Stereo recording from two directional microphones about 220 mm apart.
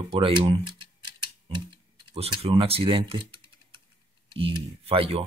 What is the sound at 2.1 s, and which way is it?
Speech, 25° right (ahead or behind).